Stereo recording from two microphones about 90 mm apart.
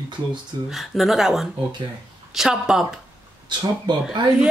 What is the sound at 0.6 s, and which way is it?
Speech, centre (ahead or behind).